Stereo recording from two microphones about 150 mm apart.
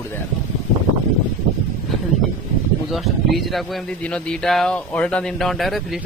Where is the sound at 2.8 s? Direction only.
Centre (ahead or behind).